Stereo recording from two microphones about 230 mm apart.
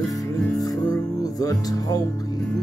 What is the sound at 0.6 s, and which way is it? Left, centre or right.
Music, centre.